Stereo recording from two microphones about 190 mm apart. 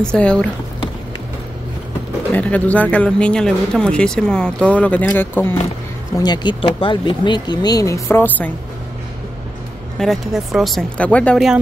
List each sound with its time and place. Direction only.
0.0 s speech: 5° left (ahead or behind)
2.3 s speech: 5° left (ahead or behind)
6.1 s speech: 20° left (ahead or behind)
9.9 s speech: centre (ahead or behind)